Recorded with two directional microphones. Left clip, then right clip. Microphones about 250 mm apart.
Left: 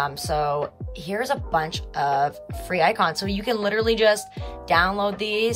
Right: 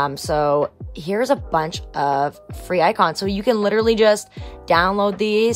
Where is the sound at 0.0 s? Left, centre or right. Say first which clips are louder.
Right 5 dB; right.